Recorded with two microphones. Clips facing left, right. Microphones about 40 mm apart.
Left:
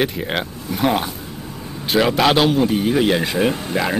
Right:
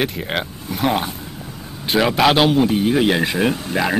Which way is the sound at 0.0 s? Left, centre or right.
Centre.